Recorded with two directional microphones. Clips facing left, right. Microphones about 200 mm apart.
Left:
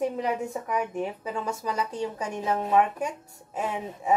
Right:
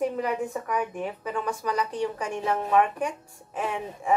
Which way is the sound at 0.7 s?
25° left (ahead or behind).